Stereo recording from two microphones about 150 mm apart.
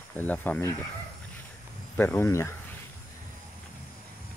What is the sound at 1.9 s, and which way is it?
Speech, 15° left (ahead or behind).